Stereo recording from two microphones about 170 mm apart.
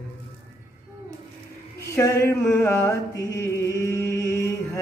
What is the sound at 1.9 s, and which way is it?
Mantra, 15° left (ahead or behind).